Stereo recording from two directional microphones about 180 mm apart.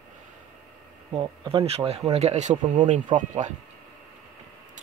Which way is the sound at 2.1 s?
40° right (ahead or behind).